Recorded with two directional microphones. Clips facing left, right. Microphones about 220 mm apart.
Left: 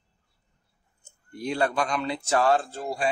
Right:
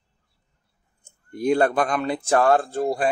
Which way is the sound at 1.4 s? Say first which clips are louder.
Right 7 dB; 50° right (ahead or behind).